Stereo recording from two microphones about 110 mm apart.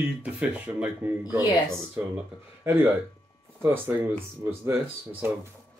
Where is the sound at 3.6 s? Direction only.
20° right (ahead or behind).